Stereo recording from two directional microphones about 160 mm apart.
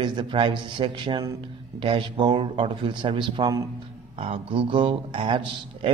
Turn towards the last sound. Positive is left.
turn(degrees=-30)  # may be behind; listen again after turning